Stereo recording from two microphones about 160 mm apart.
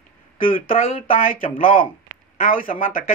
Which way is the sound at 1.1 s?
60° left (ahead or behind).